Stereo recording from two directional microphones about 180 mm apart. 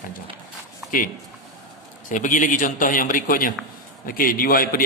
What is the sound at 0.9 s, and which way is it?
A man's voice, 50° left (ahead or behind).